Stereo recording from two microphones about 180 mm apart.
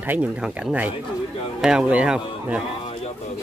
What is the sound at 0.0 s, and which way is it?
Speech, 10° right (ahead or behind).